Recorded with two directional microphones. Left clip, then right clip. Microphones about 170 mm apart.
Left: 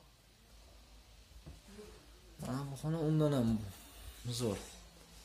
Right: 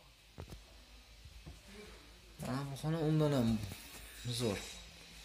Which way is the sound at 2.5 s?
10° left (ahead or behind).